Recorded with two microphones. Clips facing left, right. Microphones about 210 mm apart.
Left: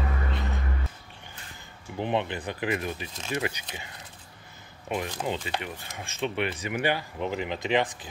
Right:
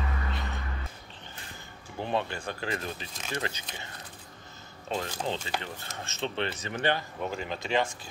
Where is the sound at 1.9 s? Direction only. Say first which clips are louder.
Left 3 dB; 20° left (ahead or behind).